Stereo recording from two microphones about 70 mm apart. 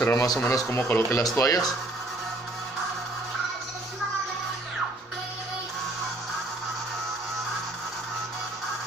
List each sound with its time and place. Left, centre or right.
0.0 s speech: left
0.5 s speech: left
0.7 s speech: left
1.1 s speech: left